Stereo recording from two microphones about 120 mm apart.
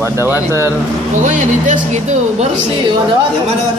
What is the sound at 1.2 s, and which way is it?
Speech, 90° right.